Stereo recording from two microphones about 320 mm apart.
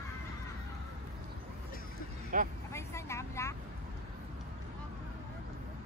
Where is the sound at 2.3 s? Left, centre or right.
Right.